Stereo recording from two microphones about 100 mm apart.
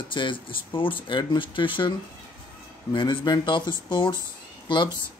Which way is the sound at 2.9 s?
50° left (ahead or behind).